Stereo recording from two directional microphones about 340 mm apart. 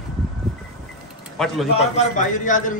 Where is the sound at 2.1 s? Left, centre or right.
Left.